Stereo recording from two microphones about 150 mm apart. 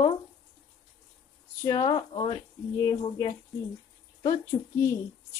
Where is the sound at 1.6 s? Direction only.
25° left (ahead or behind).